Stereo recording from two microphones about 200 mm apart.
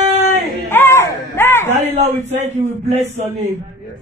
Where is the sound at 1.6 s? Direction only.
35° right (ahead or behind).